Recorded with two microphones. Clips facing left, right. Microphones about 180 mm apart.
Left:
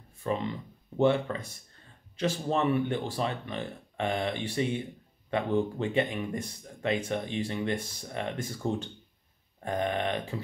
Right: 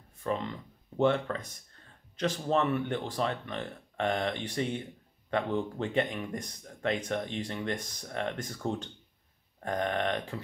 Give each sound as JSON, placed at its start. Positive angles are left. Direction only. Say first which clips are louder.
{"t": 0.2, "sound": "speech", "louder": "left 2 dB", "side_deg": 10}